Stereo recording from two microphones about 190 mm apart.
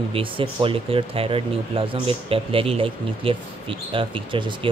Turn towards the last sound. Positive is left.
turn(degrees=-25)  # may be behind; listen again after turning